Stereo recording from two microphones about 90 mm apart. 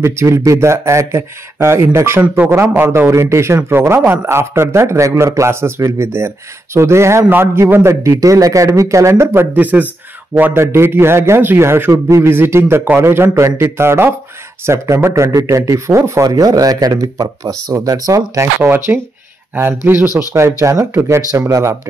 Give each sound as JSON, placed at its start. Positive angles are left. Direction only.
{"t": 0.0, "sound": "speech", "side_deg": -30}
{"t": 8.2, "sound": "speech", "side_deg": -40}
{"t": 19.5, "sound": "speech", "side_deg": -25}